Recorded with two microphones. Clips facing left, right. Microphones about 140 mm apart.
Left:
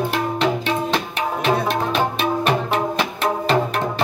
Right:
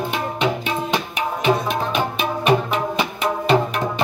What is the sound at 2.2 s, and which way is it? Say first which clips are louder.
Music: right 1 dB; centre (ahead or behind).